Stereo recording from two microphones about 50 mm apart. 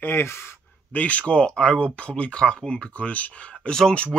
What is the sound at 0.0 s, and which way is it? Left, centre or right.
Speech, left.